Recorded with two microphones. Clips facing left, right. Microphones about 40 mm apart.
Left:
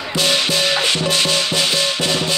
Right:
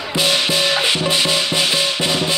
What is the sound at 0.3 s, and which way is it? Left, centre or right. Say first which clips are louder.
Music: even; centre.